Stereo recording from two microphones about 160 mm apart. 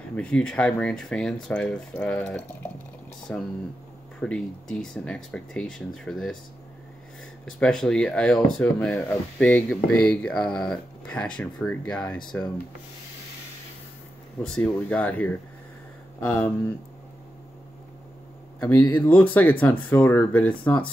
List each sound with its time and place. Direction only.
0.1 s speech: 5° left (ahead or behind)
7.5 s speech: 5° left (ahead or behind)
14.4 s speech: 5° left (ahead or behind)
18.8 s speech: 25° left (ahead or behind)
19.6 s speech: 10° left (ahead or behind)